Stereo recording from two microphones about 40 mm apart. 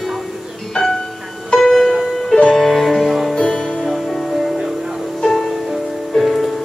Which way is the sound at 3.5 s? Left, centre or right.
Left.